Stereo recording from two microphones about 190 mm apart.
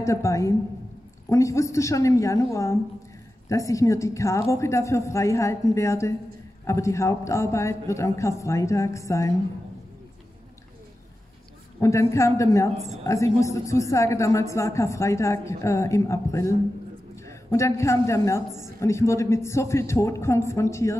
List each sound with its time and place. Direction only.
0.0 s a man's voice: 15° left (ahead or behind)
11.8 s a man's voice: 15° left (ahead or behind)